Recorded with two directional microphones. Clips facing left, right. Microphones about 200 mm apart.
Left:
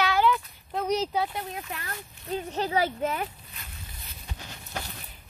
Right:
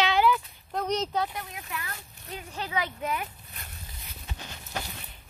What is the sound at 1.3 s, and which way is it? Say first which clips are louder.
Speech: left 3 dB; 35° left (ahead or behind).